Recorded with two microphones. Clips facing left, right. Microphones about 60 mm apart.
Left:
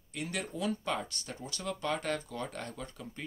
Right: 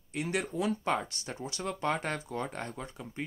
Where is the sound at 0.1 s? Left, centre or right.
Right.